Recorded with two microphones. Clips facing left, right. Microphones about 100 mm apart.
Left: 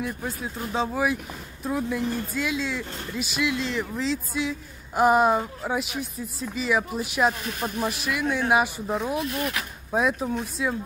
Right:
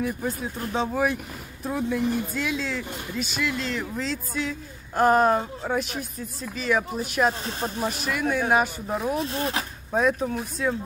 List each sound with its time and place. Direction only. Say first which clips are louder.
0.0 s speech: right 3 dB; centre (ahead or behind)
7.4 s speech: even; 30° right (ahead or behind)
8.0 s speech: right 2 dB; centre (ahead or behind)
9.2 s speech: right 1 dB; 30° right (ahead or behind)
9.9 s speech: right 1 dB; 5° left (ahead or behind)